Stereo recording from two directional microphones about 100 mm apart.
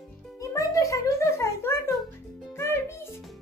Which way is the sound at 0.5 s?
35° left (ahead or behind).